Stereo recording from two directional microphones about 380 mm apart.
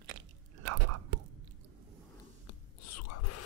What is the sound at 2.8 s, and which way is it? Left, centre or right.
Whispering, left.